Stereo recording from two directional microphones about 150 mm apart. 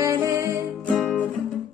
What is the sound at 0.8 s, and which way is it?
Music, 5° left (ahead or behind).